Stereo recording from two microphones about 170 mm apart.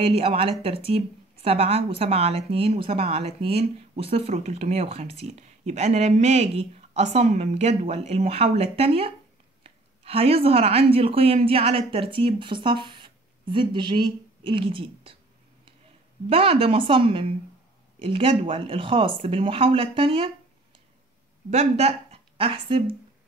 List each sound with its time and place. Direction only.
0.0 s a woman's voice: 35° right (ahead or behind)
16.3 s a woman's voice: 35° right (ahead or behind)
21.5 s a woman's voice: 40° right (ahead or behind)